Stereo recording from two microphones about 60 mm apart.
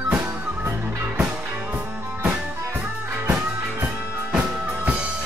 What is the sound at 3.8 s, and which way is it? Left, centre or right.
Music, right.